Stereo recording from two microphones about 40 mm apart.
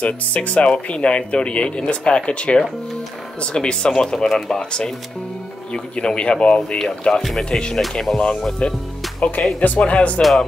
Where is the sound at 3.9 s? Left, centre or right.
Centre; by 6.7 s left.